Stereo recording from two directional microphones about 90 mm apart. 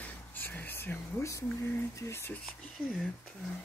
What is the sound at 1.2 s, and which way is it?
Speech, 35° left (ahead or behind).